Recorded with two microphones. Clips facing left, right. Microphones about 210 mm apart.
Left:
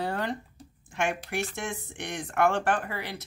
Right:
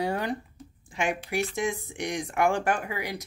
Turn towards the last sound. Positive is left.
turn(degrees=-10)  # may be behind; listen again after turning